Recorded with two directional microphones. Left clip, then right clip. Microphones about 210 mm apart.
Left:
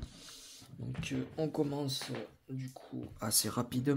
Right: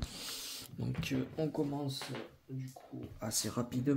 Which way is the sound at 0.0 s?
40° right (ahead or behind).